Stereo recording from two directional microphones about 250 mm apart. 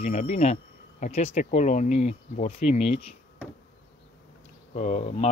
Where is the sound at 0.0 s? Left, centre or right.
Left.